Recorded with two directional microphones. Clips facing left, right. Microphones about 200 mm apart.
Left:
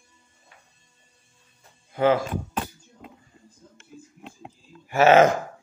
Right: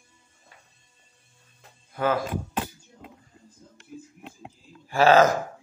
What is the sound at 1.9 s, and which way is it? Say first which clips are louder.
Speech: left 5 dB; 20° left (ahead or behind).